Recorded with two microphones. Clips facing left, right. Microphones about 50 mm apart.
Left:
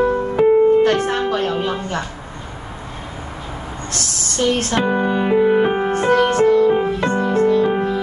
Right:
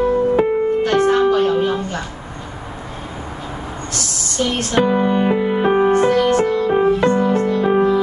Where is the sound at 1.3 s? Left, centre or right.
Left.